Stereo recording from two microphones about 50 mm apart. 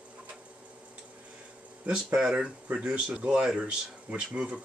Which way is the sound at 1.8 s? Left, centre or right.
Right.